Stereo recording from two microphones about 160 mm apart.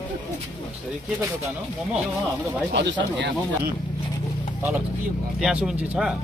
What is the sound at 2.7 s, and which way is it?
Speech, 90° right.